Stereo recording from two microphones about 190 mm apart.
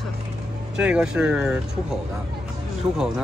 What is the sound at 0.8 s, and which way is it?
Speech, 5° right (ahead or behind).